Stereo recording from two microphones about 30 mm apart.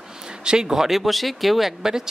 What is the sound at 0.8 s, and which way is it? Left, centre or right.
Speech, centre.